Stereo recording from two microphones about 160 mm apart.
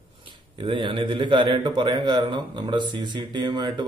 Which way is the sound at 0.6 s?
30° right (ahead or behind).